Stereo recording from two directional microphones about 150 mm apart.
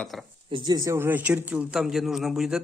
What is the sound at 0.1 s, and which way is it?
Speech, centre (ahead or behind).